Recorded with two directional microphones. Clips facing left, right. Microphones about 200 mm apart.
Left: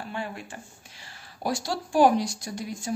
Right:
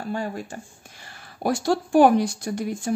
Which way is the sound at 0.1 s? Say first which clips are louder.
Right 8 dB; 40° right (ahead or behind).